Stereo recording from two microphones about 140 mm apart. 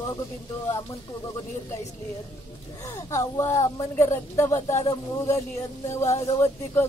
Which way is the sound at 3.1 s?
20° left (ahead or behind).